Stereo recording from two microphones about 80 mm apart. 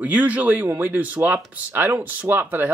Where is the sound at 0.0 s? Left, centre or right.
Centre.